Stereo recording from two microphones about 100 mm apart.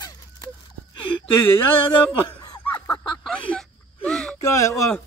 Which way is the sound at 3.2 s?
10° left (ahead or behind).